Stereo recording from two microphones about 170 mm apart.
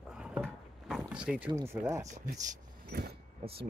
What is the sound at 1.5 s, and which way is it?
Speech, 20° right (ahead or behind).